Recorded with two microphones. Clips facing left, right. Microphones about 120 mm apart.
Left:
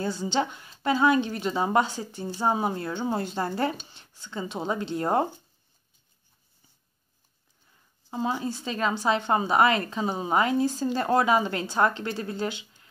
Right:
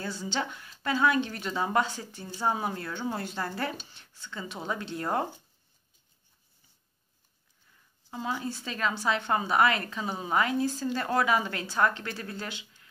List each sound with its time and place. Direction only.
0.0 s a woman's voice: 20° left (ahead or behind)
8.1 s a woman's voice: 25° left (ahead or behind)